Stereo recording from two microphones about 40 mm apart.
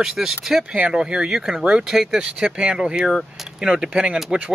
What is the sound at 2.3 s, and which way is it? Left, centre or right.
Speech, right.